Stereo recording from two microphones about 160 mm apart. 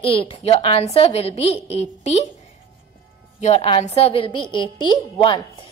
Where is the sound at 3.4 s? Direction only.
40° left (ahead or behind).